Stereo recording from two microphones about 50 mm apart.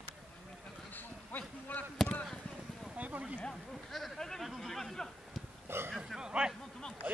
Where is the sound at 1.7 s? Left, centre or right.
Left.